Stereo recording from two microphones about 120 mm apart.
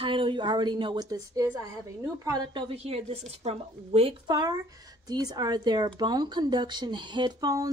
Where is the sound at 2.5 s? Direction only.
50° right (ahead or behind).